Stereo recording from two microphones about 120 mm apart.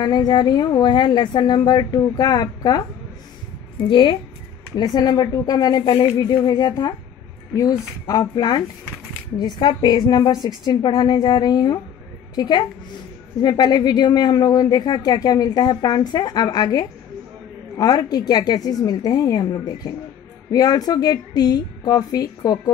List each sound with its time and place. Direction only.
0.0 s speech: 35° left (ahead or behind)
3.9 s speech: 45° left (ahead or behind)